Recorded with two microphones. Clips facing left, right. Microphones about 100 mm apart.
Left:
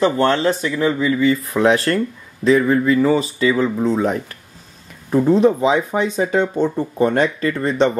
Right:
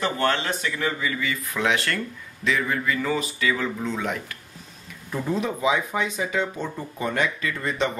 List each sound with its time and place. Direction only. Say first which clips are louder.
0.0 s speech: left 8 dB; 30° left (ahead or behind)
7.1 s speech: left 8 dB; 40° left (ahead or behind)